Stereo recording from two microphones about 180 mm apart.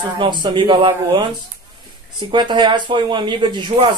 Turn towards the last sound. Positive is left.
turn(degrees=-25)  # may be behind; listen again after turning